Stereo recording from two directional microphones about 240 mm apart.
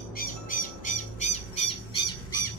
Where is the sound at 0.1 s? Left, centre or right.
Left.